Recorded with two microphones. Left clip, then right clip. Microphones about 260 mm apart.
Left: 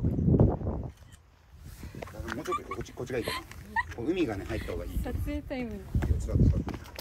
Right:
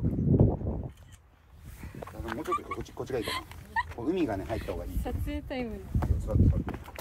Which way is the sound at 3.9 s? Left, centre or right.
Centre.